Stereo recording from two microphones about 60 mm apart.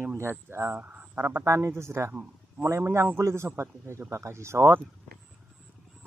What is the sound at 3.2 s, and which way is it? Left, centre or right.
Speech, right.